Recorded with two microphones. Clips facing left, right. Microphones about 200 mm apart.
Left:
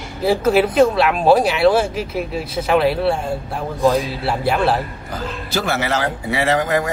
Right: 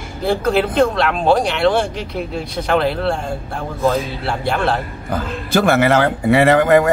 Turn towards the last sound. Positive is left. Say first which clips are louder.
# right 6 dB
turn(degrees=-55)  # may be behind; listen again after turning